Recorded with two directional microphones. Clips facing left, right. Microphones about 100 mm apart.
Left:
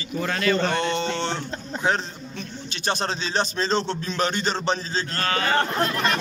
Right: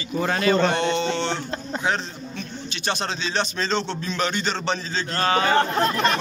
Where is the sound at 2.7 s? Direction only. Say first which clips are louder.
Left 1 dB; 40° left (ahead or behind).